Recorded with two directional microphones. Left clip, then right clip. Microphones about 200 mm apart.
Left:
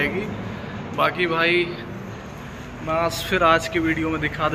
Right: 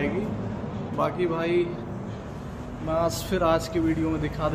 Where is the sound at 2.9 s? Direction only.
10° right (ahead or behind).